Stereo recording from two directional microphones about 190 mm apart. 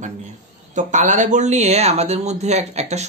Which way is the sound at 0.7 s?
40° right (ahead or behind).